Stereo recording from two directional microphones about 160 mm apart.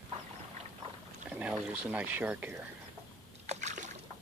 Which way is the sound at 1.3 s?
5° right (ahead or behind).